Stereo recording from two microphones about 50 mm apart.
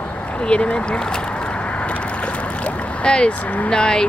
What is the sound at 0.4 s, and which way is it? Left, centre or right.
Boat, left.